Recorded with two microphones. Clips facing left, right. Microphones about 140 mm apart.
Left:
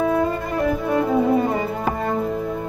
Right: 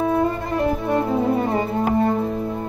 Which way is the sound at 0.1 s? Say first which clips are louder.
Even; 30° right (ahead or behind).